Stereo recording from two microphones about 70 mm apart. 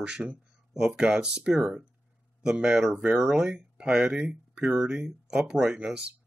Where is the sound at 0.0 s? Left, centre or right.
Centre.